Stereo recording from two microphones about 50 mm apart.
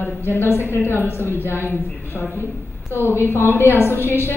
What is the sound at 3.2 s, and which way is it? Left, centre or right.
A woman's voice, left.